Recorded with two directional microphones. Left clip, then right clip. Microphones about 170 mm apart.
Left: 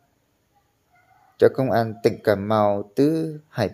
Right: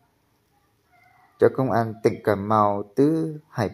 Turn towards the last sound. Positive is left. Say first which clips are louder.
# left 2 dB
turn(degrees=20)  # may be behind; listen again after turning